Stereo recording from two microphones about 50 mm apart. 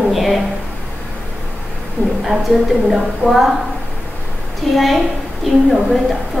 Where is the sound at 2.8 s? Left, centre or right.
Centre.